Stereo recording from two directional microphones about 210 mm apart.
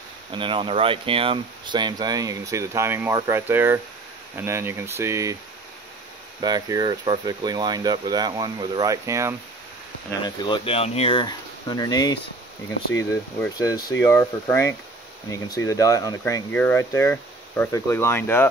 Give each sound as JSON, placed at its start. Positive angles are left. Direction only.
{"t": 0.3, "sound": "speech", "side_deg": -25}
{"t": 6.4, "sound": "speech", "side_deg": -20}
{"t": 10.2, "sound": "speech", "side_deg": 20}
{"t": 13.6, "sound": "speech", "side_deg": 15}